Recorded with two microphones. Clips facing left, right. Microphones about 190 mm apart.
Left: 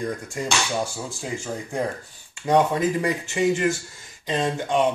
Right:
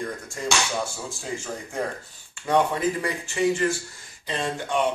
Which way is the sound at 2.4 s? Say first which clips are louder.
Left 2 dB; 20° left (ahead or behind).